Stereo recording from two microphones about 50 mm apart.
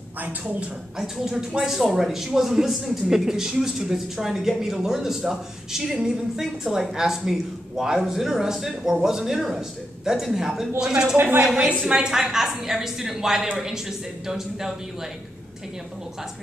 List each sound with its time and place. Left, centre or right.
0.2 s a woman's voice: right
0.9 s speech: centre
11.1 s a woman's voice: right
11.9 s speech: centre